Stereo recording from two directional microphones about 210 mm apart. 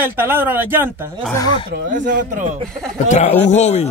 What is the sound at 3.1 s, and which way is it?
Speech, 35° left (ahead or behind).